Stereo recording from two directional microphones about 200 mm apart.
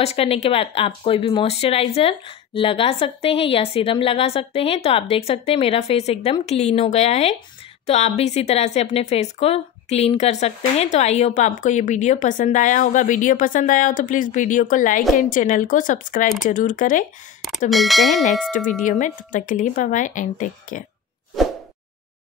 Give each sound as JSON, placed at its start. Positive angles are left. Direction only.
{"t": 0.0, "sound": "speech", "side_deg": 30}
{"t": 17.6, "sound": "speech", "side_deg": 0}
{"t": 18.5, "sound": "speech", "side_deg": 40}